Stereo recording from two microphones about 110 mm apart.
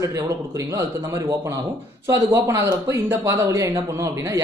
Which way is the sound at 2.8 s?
25° right (ahead or behind).